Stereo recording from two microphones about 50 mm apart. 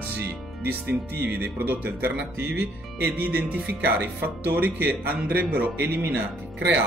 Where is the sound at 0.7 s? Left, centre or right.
Right.